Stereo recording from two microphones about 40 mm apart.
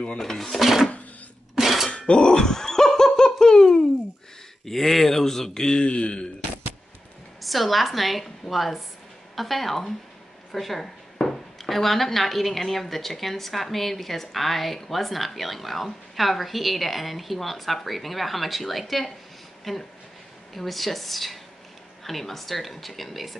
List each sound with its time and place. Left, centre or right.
0.2 s speech: centre
0.6 s speech: centre
1.5 s dishes: centre
1.9 s laughter: left
4.6 s speech: centre; by 6.2 s left
7.4 s speech: centre